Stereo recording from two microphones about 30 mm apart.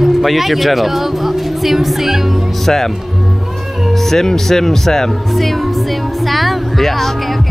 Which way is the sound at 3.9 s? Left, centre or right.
Centre.